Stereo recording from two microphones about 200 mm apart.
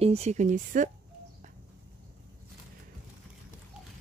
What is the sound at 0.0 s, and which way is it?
Speech, 30° right (ahead or behind).